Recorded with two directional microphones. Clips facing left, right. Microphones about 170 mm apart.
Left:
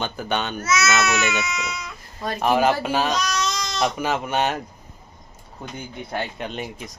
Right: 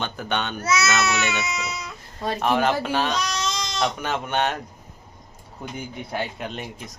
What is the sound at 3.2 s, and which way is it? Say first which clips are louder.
Baby cry: left 2 dB; 30° right (ahead or behind).